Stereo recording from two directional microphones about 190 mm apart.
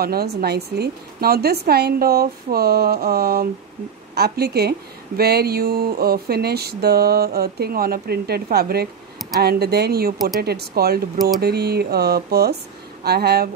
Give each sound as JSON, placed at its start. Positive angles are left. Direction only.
{"t": 0.0, "sound": "speech", "side_deg": -55}